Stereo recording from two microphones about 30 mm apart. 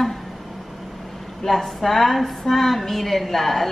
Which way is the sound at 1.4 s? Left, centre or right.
Centre.